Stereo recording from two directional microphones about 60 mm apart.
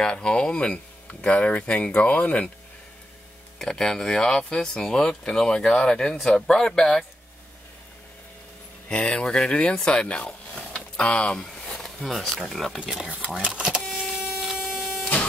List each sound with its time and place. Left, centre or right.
0.0 s speech: centre
3.5 s speech: centre
8.8 s speech: centre
11.8 s speech: centre
12.8 s speech: centre
13.7 s printer: centre